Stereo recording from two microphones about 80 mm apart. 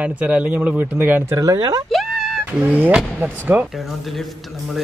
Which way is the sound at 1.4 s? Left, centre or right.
Right.